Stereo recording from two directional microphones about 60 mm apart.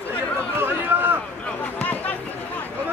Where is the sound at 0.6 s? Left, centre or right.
Right.